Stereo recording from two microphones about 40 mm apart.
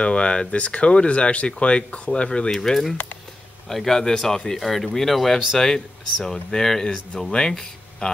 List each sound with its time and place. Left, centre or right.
0.0 s speech: left
2.5 s speech: centre